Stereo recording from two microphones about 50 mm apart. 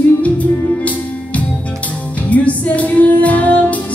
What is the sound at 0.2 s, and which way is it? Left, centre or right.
Music, left.